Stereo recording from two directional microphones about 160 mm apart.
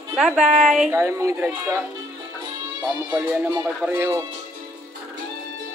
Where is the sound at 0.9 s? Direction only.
15° right (ahead or behind).